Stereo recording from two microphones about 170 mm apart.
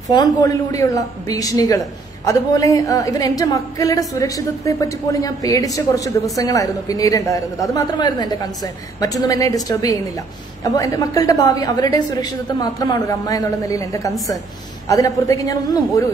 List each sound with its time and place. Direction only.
0.1 s speech: 25° left (ahead or behind)